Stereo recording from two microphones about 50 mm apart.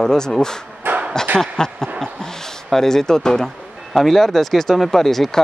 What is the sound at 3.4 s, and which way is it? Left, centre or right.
Speech, centre.